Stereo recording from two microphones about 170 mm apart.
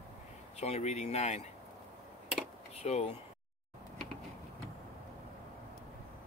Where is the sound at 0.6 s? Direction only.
40° left (ahead or behind).